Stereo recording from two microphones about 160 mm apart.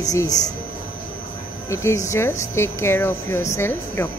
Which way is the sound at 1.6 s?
20° left (ahead or behind).